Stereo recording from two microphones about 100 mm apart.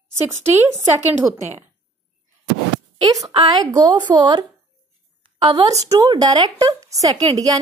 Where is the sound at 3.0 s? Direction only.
35° right (ahead or behind).